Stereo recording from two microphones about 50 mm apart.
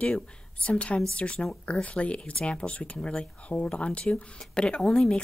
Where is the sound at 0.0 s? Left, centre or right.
Left.